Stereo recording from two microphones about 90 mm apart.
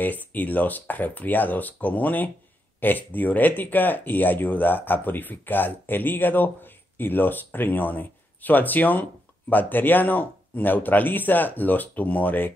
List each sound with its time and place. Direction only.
0.0 s speech: 20° left (ahead or behind)